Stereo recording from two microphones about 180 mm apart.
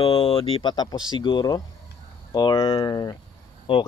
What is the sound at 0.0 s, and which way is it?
Speech, 30° left (ahead or behind).